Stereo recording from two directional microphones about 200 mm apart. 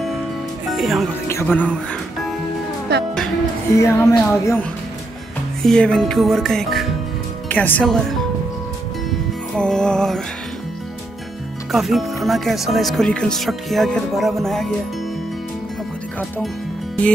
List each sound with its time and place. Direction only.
0.7 s music: centre (ahead or behind)
1.3 s speech: 10° left (ahead or behind)
2.9 s speech: 55° right (ahead or behind)
3.8 s speech: 15° left (ahead or behind)
5.6 s speech: 5° left (ahead or behind)
9.6 s speech: 5° left (ahead or behind)
11.7 s speech: centre (ahead or behind)